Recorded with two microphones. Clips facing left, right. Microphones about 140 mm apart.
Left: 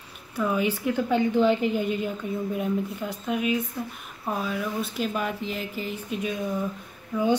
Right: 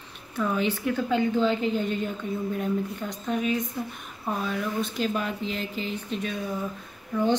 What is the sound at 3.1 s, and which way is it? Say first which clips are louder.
A woman's voice: left 1 dB; 5° left (ahead or behind).